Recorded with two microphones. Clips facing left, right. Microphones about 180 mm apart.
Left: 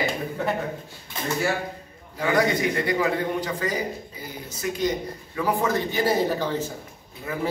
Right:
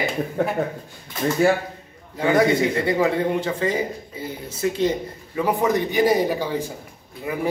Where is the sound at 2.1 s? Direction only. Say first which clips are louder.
Right 4 dB; 25° right (ahead or behind).